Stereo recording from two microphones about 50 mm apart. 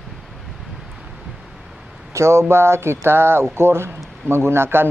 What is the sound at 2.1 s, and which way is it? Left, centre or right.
Speech, right.